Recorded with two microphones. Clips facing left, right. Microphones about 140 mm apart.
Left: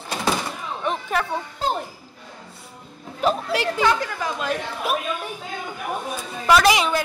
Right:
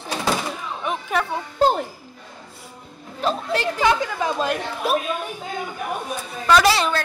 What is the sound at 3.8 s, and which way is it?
Speech, 20° right (ahead or behind).